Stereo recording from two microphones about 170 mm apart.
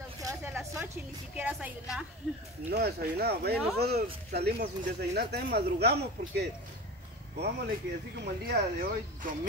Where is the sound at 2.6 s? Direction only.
65° right (ahead or behind).